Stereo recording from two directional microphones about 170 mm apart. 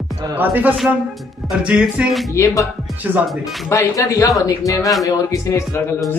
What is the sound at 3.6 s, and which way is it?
Speech, 15° left (ahead or behind).